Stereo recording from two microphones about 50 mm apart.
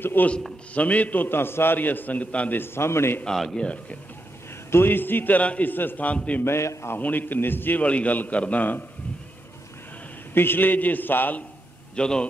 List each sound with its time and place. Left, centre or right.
0.0 s a man's voice: left
0.7 s a man's voice: left
2.5 s a man's voice: left
3.3 s a man's voice: centre
3.5 s a man's voice: left
4.6 s a man's voice: left
5.4 s a man's voice: left
5.7 s a man's voice: left
6.1 s a man's voice: left
6.4 s a man's voice: left
7.0 s a man's voice: left
7.8 s a man's voice: left
10.3 s a man's voice: left
11.9 s speech: centre